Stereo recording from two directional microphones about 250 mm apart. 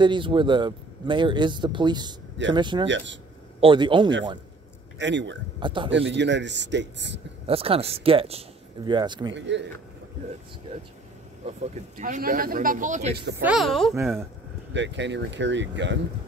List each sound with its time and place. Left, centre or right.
0.0 s speech: centre
4.9 s speech: right
5.6 s speech: centre
5.9 s speech: right
7.4 s speech: right
9.3 s speech: right
11.4 s speech: right
13.4 s speech: centre
14.7 s speech: right